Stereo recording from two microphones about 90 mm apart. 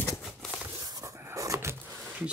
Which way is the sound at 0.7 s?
45° right (ahead or behind).